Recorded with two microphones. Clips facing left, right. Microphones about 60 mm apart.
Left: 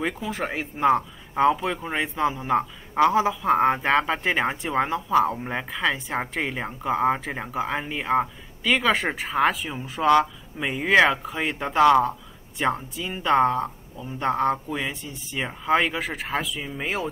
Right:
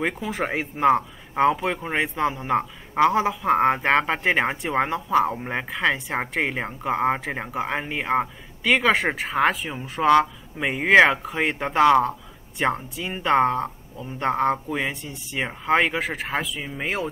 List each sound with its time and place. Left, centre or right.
0.2 s speech: centre
10.6 s speech: right